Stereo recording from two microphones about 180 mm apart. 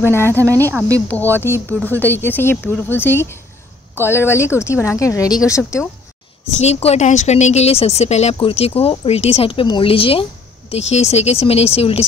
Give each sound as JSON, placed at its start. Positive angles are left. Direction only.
{"t": 0.0, "sound": "speech", "side_deg": 15}
{"t": 0.4, "sound": "speech", "side_deg": -15}
{"t": 1.0, "sound": "speech", "side_deg": 10}
{"t": 6.5, "sound": "a woman's voice", "side_deg": 35}